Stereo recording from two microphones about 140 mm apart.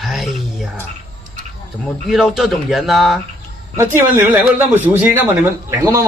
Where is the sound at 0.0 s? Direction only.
Centre (ahead or behind).